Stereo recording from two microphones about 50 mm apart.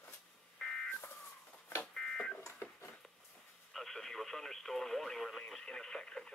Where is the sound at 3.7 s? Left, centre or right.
Centre.